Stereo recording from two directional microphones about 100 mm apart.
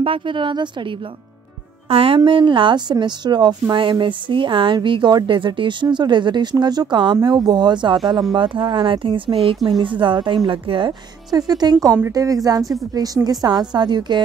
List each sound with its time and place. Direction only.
0.0 s speech: 60° right (ahead or behind)
1.9 s speech: 65° right (ahead or behind)
10.9 s a woman's voice: 40° right (ahead or behind)